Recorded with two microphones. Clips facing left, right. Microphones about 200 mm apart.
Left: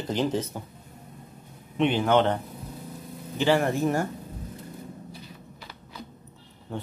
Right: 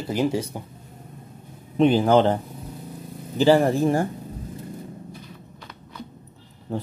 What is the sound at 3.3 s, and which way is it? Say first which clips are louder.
Speech: right 6 dB; 35° right (ahead or behind).